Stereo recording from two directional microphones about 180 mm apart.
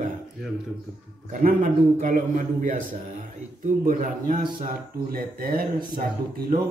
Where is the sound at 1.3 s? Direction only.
50° right (ahead or behind).